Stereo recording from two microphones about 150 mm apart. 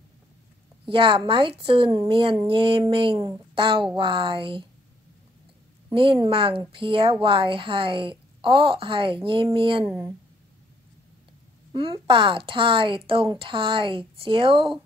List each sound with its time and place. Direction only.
0.8 s speech: 35° right (ahead or behind)
5.9 s speech: 35° right (ahead or behind)
9.8 s speech: 15° right (ahead or behind)
11.7 s speech: 35° right (ahead or behind)